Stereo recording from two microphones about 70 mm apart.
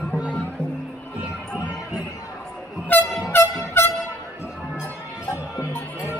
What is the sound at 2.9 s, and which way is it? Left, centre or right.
Vehicle, left.